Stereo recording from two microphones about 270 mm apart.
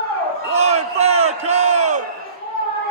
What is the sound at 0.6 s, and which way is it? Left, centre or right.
Crowd, right.